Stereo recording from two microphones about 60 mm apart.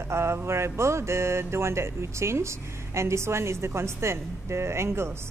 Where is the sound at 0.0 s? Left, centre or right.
Right.